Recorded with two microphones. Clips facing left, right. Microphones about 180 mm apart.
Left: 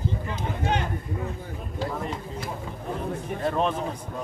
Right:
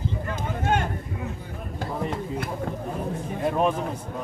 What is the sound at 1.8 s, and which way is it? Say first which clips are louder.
Speech: right 2 dB; 50° right (ahead or behind).